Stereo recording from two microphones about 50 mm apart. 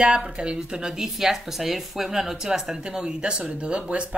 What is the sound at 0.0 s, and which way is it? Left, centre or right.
Speech, centre.